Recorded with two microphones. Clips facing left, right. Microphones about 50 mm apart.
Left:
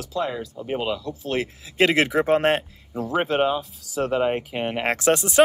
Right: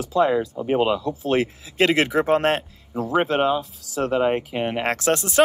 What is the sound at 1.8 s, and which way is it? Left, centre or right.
Speech, centre.